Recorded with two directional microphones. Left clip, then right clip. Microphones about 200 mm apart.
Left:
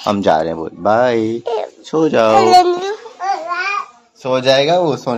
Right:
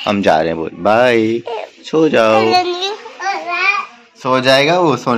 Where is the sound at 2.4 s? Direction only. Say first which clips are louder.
Left 4 dB; 55° left (ahead or behind).